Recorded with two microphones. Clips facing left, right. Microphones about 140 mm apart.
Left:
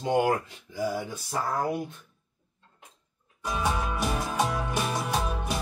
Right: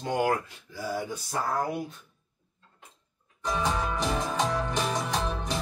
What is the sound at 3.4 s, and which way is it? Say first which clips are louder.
Music: even; 10° left (ahead or behind).